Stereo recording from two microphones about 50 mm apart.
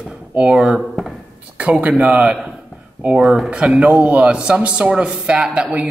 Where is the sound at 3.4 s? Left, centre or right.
Right.